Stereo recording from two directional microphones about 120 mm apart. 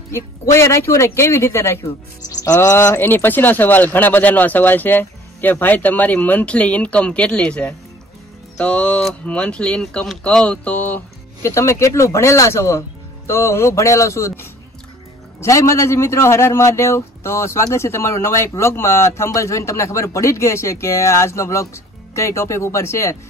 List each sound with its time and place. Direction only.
0.1 s a man's voice: 25° left (ahead or behind)
11.4 s a man's voice: 25° left (ahead or behind)